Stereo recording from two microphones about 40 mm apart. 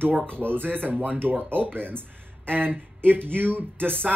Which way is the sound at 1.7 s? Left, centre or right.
Right.